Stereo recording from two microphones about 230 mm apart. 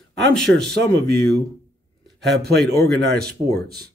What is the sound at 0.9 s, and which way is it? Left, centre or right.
Speech, right.